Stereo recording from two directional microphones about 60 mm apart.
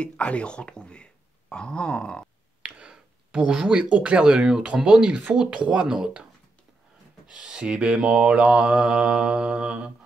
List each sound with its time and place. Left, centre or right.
0.0 s speech: centre
2.6 s speech: centre
7.2 s mantra: centre